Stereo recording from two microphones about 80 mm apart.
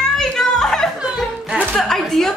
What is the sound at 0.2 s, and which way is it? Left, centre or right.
Children playing, centre.